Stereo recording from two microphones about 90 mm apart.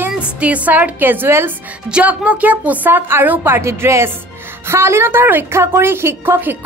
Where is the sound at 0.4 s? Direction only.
15° right (ahead or behind).